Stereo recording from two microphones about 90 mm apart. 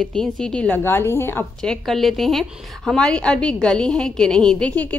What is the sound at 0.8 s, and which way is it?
Speech, 25° left (ahead or behind).